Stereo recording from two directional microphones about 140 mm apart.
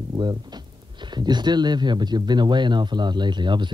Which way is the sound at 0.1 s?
30° right (ahead or behind).